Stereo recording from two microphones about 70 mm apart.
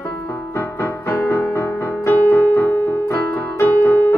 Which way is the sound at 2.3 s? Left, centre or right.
Left.